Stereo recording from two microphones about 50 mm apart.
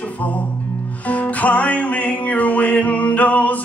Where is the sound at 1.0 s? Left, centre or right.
Left.